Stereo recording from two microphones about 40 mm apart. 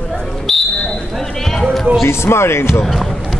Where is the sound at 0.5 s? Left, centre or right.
Centre.